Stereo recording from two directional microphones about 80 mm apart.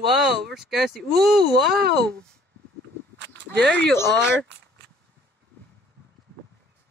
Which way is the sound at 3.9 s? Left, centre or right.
Left.